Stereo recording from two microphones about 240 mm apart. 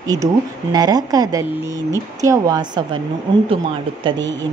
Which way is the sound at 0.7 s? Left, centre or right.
Centre.